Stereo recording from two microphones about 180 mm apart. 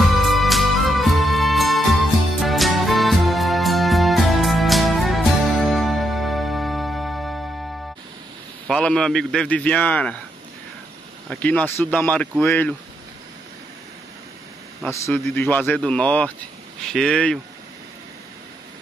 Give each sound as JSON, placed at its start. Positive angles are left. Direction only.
{"t": 0.1, "sound": "music", "side_deg": 0}
{"t": 8.6, "sound": "a man's voice", "side_deg": 5}
{"t": 11.2, "sound": "speech", "side_deg": 10}
{"t": 14.8, "sound": "a man's voice", "side_deg": 10}